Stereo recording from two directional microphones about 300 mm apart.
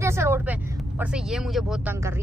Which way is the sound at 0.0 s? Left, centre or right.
Centre.